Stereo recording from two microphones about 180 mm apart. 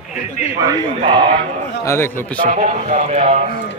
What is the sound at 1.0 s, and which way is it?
Speech, 25° right (ahead or behind).